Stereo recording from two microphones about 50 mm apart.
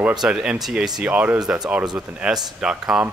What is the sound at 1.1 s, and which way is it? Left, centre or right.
Speech, right.